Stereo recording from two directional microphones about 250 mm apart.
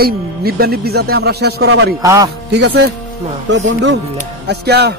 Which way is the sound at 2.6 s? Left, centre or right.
Right.